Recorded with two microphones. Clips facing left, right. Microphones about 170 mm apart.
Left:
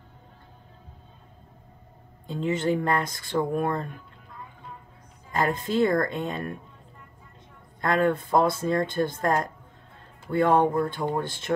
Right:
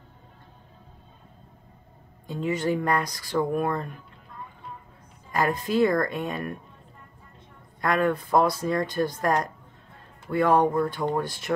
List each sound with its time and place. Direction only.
2.2 s speech: 25° left (ahead or behind)
5.3 s speech: 25° left (ahead or behind)
7.8 s speech: 25° left (ahead or behind)